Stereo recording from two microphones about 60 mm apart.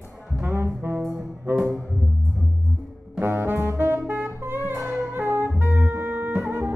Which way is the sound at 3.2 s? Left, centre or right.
Right.